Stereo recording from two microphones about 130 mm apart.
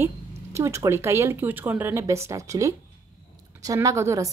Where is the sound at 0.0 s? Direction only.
20° right (ahead or behind).